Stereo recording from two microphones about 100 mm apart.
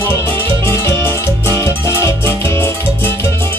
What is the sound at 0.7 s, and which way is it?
Music, 25° left (ahead or behind).